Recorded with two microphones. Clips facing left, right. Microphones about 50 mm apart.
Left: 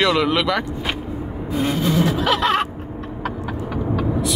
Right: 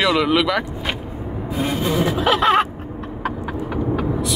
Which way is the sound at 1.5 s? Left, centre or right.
Centre.